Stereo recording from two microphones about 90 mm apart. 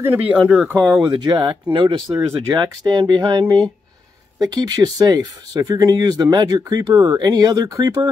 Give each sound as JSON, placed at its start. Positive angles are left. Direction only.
{"t": 0.1, "sound": "speech", "side_deg": -15}
{"t": 1.0, "sound": "speech", "side_deg": -45}
{"t": 1.7, "sound": "speech", "side_deg": -75}
{"t": 2.5, "sound": "speech", "side_deg": -55}